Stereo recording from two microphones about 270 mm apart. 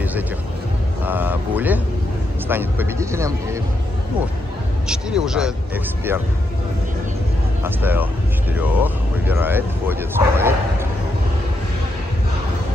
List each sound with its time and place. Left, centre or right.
1.0 s speech: centre
4.8 s speech: centre
7.6 s speech: centre